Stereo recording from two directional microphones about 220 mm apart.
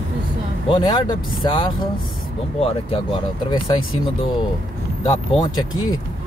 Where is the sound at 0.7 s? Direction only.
20° left (ahead or behind).